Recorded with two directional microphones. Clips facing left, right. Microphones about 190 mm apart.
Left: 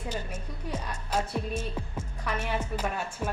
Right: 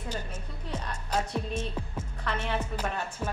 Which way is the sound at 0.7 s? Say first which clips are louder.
Left 1 dB; 10° left (ahead or behind).